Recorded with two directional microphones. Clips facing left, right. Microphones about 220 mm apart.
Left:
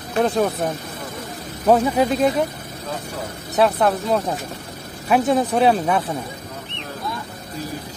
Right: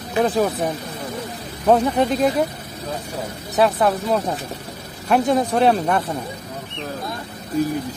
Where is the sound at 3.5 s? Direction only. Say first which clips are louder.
Even; centre (ahead or behind).